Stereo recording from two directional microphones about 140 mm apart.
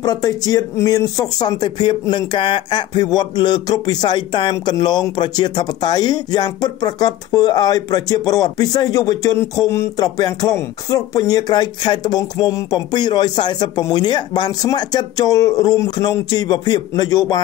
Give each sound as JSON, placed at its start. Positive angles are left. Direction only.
{"t": 0.0, "sound": "speech", "side_deg": 25}